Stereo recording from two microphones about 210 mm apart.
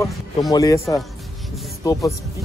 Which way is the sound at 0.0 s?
15° left (ahead or behind).